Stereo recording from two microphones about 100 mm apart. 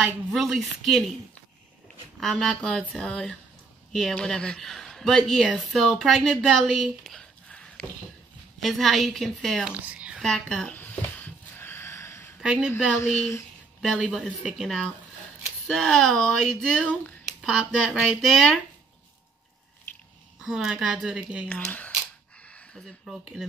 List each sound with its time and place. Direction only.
0.0 s a woman's voice: centre (ahead or behind)
2.1 s a woman's voice: centre (ahead or behind)
9.8 s a woman's voice: 15° right (ahead or behind)
10.2 s a woman's voice: 5° left (ahead or behind)
10.7 s a sound: 15° left (ahead or behind)
12.4 s speech: 5° right (ahead or behind)
13.9 s a woman's voice: 5° right (ahead or behind)
20.4 s speech: 5° right (ahead or behind)
21.5 s speech: 15° left (ahead or behind)
22.5 s speech: 5° left (ahead or behind)